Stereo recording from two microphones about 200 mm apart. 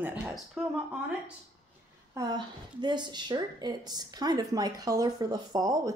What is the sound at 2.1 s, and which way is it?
A woman's voice, 20° right (ahead or behind).